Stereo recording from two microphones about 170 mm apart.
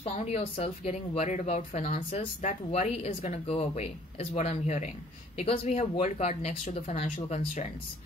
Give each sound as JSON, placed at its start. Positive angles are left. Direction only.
{"t": 0.0, "sound": "speech", "side_deg": 40}